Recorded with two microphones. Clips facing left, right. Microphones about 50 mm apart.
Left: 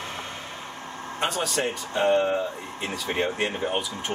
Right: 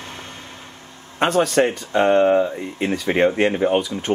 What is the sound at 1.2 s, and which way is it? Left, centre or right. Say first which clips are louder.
Speech: right 10 dB; right.